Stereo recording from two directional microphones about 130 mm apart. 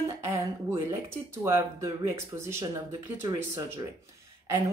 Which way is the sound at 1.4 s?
20° right (ahead or behind).